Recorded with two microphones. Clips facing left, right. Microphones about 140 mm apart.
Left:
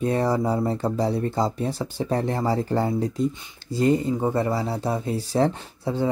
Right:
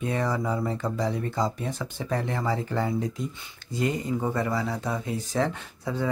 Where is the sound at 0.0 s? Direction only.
35° left (ahead or behind).